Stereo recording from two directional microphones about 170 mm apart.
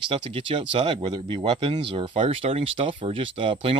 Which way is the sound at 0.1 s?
30° right (ahead or behind).